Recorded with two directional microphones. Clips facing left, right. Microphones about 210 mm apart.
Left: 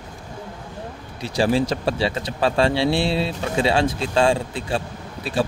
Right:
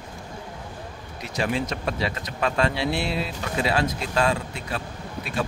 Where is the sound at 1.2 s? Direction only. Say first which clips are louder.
Left 7 dB; 35° left (ahead or behind).